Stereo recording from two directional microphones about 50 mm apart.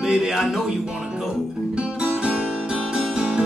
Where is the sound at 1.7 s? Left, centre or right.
Centre.